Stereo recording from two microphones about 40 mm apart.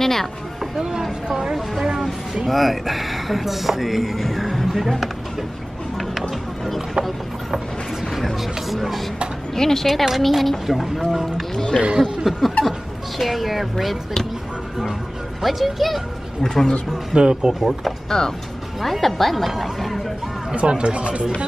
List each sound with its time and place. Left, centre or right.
0.0 s a sound: centre
0.7 s speech: centre
1.5 s a sound: centre
2.4 s speech: centre
8.1 s speech: centre
11.5 s speech: centre
12.3 s snicker: centre
13.2 s speech: centre
15.4 s speech: centre
16.4 s speech: centre
17.1 s speech: right
18.2 s speech: centre
20.5 s speech: right